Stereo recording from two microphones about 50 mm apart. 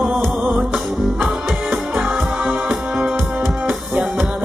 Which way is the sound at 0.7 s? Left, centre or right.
Centre.